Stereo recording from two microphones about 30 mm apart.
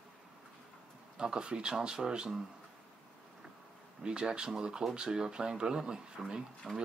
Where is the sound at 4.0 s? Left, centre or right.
Right.